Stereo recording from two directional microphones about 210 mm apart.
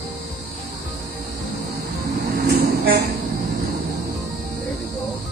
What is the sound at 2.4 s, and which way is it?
Vehicle, 50° right (ahead or behind).